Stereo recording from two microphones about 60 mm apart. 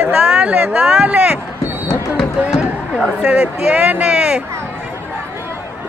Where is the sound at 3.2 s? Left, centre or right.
Centre.